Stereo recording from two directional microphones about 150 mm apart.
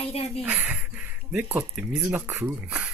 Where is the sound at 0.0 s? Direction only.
40° left (ahead or behind).